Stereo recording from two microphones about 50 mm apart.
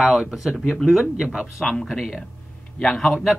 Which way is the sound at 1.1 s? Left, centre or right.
Centre.